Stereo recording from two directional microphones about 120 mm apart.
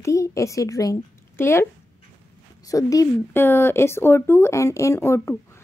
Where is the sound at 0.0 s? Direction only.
25° left (ahead or behind).